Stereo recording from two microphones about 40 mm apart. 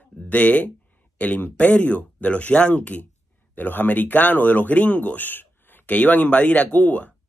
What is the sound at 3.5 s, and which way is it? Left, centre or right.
Speech, left.